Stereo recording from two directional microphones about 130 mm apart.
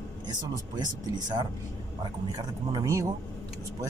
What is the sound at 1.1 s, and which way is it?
Speech, 30° right (ahead or behind).